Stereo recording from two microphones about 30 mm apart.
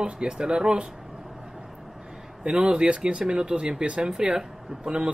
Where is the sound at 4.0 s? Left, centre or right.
Right.